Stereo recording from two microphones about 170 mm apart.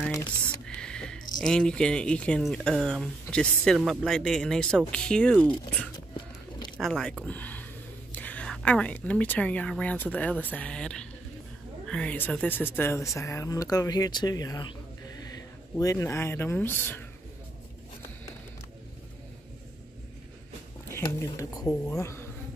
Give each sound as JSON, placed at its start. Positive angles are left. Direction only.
{"t": 0.7, "sound": "speech", "side_deg": 5}
{"t": 6.8, "sound": "speech", "side_deg": 5}
{"t": 15.8, "sound": "speech", "side_deg": 20}
{"t": 20.9, "sound": "speech", "side_deg": 20}